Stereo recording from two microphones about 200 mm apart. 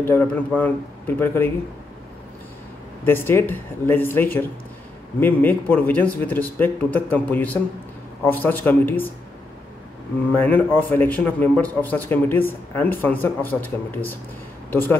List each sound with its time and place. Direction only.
0.0 s a man's voice: 10° left (ahead or behind)
3.1 s a man's voice: 10° left (ahead or behind)
10.3 s a man's voice: 10° left (ahead or behind)